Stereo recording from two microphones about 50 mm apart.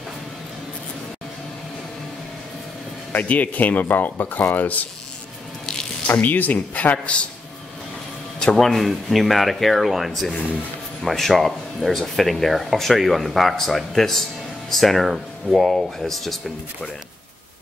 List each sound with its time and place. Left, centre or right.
3.1 s speech: left
6.0 s speech: left
8.5 s speech: centre